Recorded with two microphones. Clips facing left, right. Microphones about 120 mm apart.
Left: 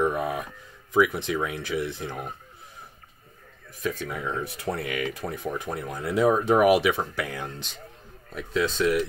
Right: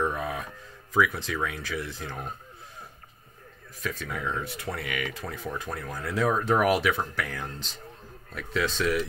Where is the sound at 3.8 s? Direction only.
20° left (ahead or behind).